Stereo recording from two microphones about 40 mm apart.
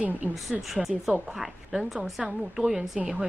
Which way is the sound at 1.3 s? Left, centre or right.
Centre.